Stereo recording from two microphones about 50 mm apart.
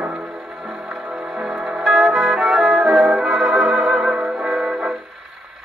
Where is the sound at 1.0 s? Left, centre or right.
Right.